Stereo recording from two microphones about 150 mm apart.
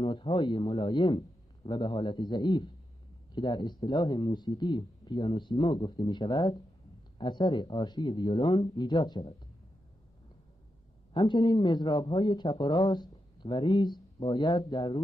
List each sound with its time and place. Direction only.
0.0 s a man's voice: 35° left (ahead or behind)
11.1 s a man's voice: 30° left (ahead or behind)